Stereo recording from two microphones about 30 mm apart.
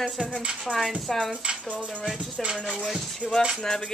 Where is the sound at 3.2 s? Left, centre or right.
Centre.